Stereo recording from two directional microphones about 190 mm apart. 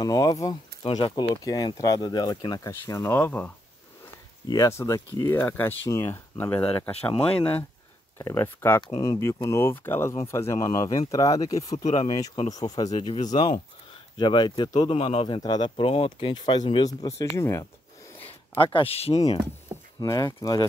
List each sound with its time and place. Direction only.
0.0 s speech: 20° left (ahead or behind)
8.2 s speech: 15° left (ahead or behind)
18.1 s a sound: 10° left (ahead or behind)
18.6 s speech: 30° left (ahead or behind)
20.0 s speech: 20° left (ahead or behind)